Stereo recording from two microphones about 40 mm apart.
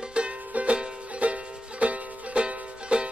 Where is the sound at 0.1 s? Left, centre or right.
Right.